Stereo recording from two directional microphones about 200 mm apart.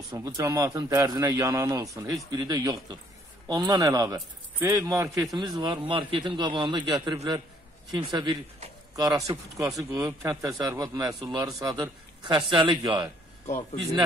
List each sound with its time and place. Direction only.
0.1 s a man's voice: 15° right (ahead or behind)